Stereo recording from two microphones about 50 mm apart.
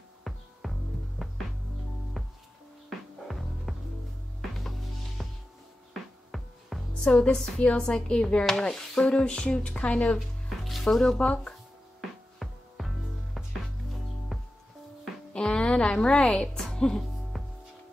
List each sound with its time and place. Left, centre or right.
0.2 s music: centre
6.3 s music: centre
7.1 s a woman's voice: centre
10.1 s music: centre
10.8 s speech: centre
11.2 s a woman's voice: left
12.4 s music: centre
15.3 s music: centre
17.3 s music: centre